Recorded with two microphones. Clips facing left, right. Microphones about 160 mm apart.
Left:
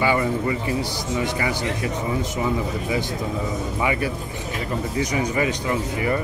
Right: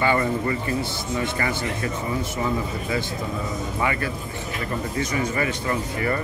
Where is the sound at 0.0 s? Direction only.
10° left (ahead or behind).